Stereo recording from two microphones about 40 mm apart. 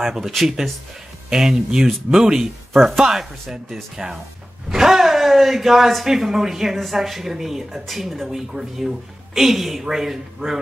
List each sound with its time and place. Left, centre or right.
0.0 s speech: centre
1.3 s speech: centre